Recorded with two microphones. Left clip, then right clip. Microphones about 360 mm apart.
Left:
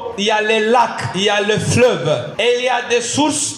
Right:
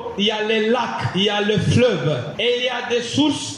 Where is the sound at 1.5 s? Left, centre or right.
Left.